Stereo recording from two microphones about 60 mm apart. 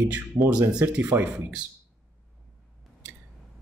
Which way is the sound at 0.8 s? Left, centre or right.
Right.